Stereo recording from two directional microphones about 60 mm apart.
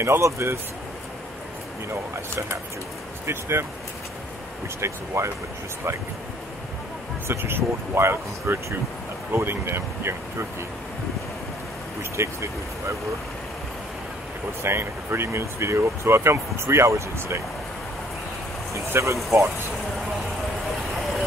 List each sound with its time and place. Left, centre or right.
0.0 s speech: right
3.3 s speech: right
4.7 s speech: right
7.2 s speech: right
12.0 s speech: right
14.6 s speech: right
18.7 s speech: right